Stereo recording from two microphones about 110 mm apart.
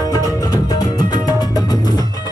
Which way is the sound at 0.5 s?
35° left (ahead or behind).